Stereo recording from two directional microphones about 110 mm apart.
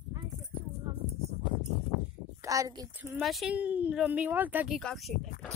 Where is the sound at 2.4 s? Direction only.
30° right (ahead or behind).